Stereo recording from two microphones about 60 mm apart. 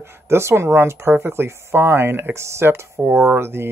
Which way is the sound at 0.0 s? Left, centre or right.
Right.